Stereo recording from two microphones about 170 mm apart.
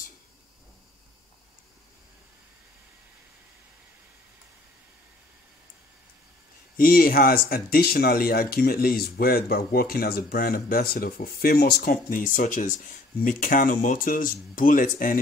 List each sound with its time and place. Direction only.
6.8 s speech: 60° left (ahead or behind)